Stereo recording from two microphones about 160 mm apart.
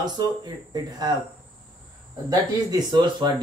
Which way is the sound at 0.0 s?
25° right (ahead or behind).